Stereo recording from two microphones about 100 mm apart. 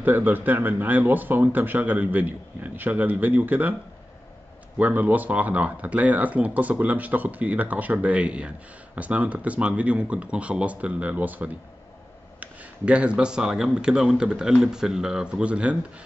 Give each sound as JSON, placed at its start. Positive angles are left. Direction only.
{"t": 0.0, "sound": "speech", "side_deg": -20}
{"t": 4.7, "sound": "speech", "side_deg": -20}